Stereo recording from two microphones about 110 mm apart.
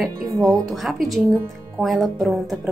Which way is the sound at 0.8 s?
Centre (ahead or behind).